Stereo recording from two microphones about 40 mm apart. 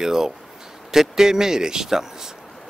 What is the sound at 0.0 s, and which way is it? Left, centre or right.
Speech, centre.